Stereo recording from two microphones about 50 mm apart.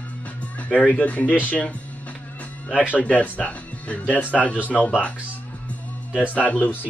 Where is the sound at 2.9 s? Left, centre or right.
Left.